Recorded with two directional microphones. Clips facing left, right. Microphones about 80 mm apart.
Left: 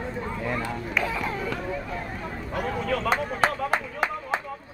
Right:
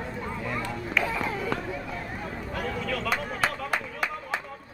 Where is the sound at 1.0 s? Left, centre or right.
Centre.